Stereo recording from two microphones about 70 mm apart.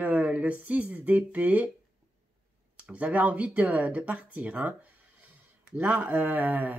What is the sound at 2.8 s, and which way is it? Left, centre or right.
Speech, right.